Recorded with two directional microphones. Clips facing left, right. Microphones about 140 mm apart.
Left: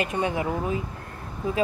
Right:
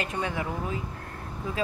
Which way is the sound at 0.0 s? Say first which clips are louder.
Left 5 dB; 15° left (ahead or behind).